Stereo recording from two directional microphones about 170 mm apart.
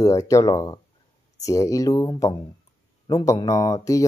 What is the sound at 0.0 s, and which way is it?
Speech, 20° left (ahead or behind).